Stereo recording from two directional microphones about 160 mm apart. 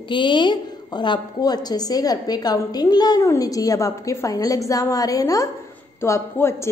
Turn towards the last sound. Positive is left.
turn(degrees=15)  # may be behind; listen again after turning